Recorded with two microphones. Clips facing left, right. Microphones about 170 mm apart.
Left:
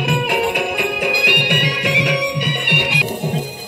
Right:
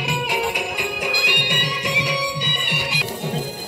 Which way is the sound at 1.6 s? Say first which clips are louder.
Left 6 dB; 65° left (ahead or behind).